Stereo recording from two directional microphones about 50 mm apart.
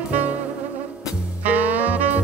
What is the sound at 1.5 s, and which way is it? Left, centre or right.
Music, right.